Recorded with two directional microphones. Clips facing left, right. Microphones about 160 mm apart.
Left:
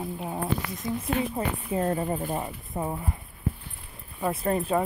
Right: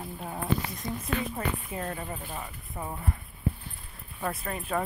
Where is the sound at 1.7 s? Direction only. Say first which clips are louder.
Left 9 dB; 30° left (ahead or behind).